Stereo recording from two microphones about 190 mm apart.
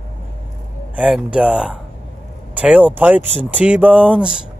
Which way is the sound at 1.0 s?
5° right (ahead or behind).